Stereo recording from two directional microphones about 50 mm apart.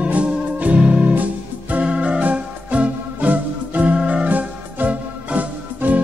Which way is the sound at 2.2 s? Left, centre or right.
Right.